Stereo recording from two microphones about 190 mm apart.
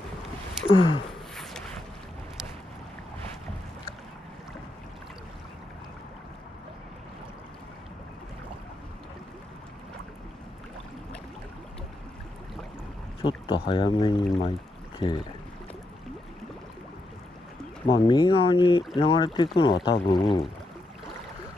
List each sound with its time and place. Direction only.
0.7 s speech: 25° left (ahead or behind)
1.3 s a sound: centre (ahead or behind)
13.5 s speech: 25° left (ahead or behind)
17.8 s speech: 25° left (ahead or behind)